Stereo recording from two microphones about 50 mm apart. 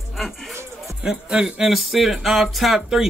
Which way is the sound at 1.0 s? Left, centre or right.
Centre.